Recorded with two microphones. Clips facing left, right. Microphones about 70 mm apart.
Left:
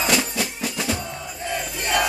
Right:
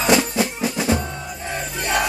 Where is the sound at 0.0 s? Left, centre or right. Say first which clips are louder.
Right 5 dB; right.